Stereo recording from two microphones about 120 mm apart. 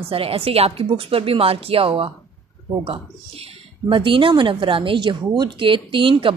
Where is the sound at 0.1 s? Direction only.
50° right (ahead or behind).